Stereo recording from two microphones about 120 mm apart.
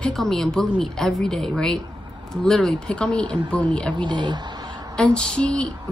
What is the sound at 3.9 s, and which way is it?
Speech, 40° right (ahead or behind).